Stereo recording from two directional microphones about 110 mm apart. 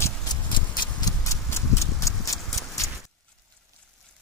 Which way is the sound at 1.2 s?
30° left (ahead or behind).